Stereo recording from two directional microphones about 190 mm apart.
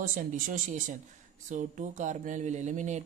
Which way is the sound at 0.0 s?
45° right (ahead or behind).